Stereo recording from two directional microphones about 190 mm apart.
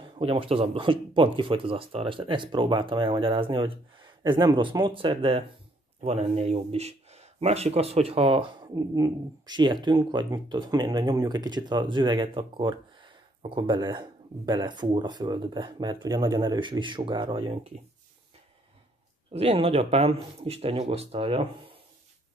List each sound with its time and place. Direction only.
0.1 s a man's voice: 30° right (ahead or behind)
19.3 s speech: 30° right (ahead or behind)